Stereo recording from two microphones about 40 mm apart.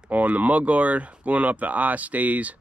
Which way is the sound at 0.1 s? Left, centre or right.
Right.